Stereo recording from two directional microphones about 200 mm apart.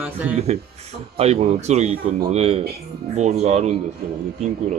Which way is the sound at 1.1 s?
30° right (ahead or behind).